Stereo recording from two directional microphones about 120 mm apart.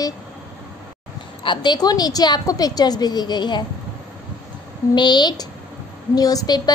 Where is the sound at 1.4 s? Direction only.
40° left (ahead or behind).